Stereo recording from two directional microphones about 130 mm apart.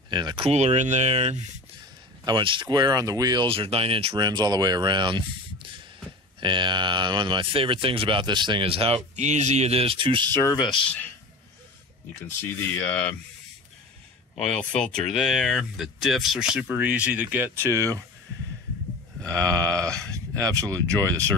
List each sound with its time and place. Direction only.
0.1 s speech: 35° right (ahead or behind)
0.5 s speech: 60° right (ahead or behind)
2.2 s speech: 35° right (ahead or behind)
3.4 s speech: 45° right (ahead or behind)
4.1 s speech: 30° right (ahead or behind)
6.4 s speech: 40° right (ahead or behind)
10.4 s speech: 35° left (ahead or behind)
12.3 s speech: 15° left (ahead or behind)
14.3 s speech: 5° left (ahead or behind); by 18.0 s 25° right (ahead or behind)
19.4 s sheep: 25° right (ahead or behind)
20.1 s speech: 25° right (ahead or behind)